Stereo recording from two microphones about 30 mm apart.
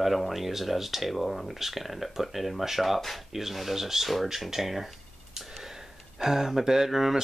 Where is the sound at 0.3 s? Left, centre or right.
Centre.